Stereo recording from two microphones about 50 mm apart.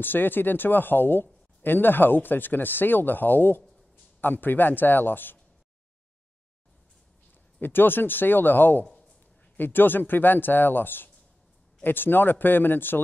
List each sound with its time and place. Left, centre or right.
0.0 s speech: left
7.6 s speech: left